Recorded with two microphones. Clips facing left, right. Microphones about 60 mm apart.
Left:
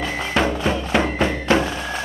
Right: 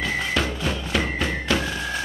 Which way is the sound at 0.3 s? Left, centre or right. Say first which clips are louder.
Left 5 dB; left.